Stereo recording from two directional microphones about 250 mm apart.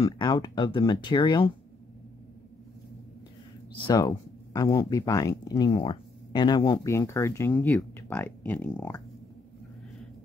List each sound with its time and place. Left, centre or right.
0.0 s speech: centre
3.7 s speech: centre